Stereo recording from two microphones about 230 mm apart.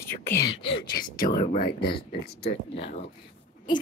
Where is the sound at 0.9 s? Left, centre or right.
Left.